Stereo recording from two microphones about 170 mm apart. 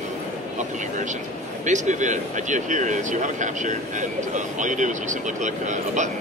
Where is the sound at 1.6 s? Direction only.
45° right (ahead or behind).